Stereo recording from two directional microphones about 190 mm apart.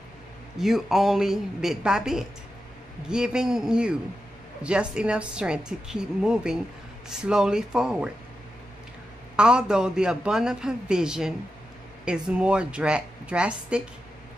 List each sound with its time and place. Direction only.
0.6 s a woman's voice: centre (ahead or behind)
9.4 s a woman's voice: 5° right (ahead or behind)